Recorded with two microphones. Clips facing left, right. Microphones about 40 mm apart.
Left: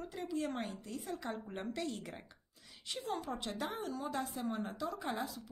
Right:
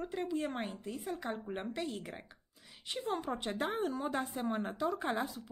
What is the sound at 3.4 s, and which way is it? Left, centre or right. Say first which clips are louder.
Speech: right 5 dB; right.